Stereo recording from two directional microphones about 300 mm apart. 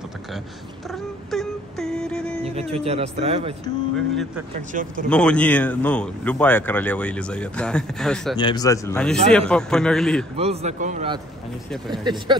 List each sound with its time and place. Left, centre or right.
0.8 s a sound: centre
2.7 s speech: centre
3.9 s speech: centre
4.6 s speech: right
5.1 s speech: centre
8.4 s a man's voice: centre
10.3 s speech: centre